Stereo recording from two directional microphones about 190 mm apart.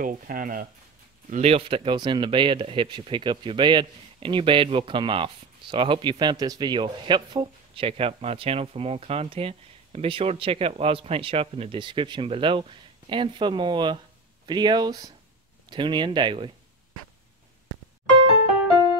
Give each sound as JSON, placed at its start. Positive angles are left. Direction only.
{"t": 0.0, "sound": "speech", "side_deg": -45}
{"t": 1.3, "sound": "speech", "side_deg": -30}